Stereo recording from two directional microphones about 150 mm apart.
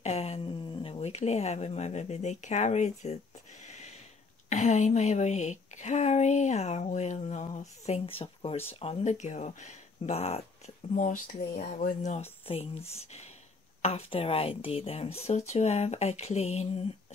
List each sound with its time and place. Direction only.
0.0 s a sound: 45° left (ahead or behind)
0.8 s a woman's voice: 45° left (ahead or behind)
3.6 s a sound: 50° left (ahead or behind)
4.5 s a woman's voice: 55° left (ahead or behind)
11.0 s speech: 60° left (ahead or behind)
12.4 s a woman's voice: 40° left (ahead or behind)